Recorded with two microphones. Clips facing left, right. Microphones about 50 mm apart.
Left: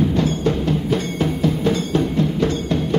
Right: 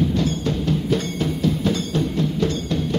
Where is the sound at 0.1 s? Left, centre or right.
Left.